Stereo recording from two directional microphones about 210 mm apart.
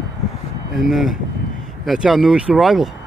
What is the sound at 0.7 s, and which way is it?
Speech, centre (ahead or behind).